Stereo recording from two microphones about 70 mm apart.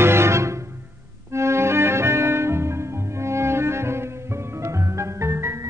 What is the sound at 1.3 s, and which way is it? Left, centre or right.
Organ, right.